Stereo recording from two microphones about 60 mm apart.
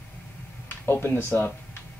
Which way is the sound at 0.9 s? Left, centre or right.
Left.